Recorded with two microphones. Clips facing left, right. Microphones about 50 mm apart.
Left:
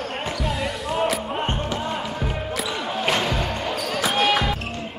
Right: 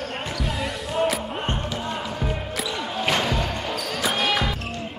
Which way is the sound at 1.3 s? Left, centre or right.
Centre.